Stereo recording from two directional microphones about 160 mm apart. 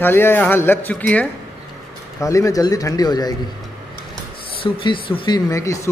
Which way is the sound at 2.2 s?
20° left (ahead or behind).